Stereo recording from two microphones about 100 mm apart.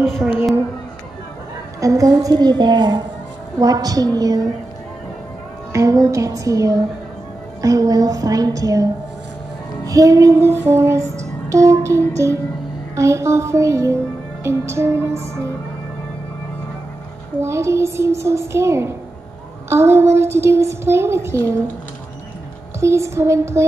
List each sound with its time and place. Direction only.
0.0 s a woman's voice: centre (ahead or behind)
1.8 s a woman's voice: 35° right (ahead or behind)
5.7 s a woman's voice: 30° right (ahead or behind)
9.8 s music: 35° right (ahead or behind)
17.4 s music: 30° right (ahead or behind)
22.8 s music: 30° right (ahead or behind)